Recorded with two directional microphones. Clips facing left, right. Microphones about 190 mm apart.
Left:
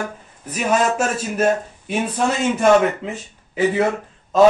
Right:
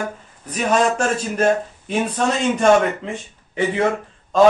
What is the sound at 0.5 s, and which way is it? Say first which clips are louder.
Speech: right 1 dB; 5° left (ahead or behind).